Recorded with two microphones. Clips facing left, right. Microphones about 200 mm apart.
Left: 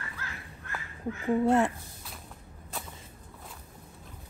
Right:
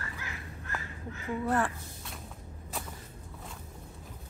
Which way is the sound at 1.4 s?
25° left (ahead or behind).